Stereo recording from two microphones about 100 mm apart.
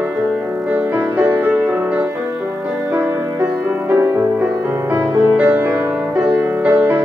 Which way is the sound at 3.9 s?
20° right (ahead or behind).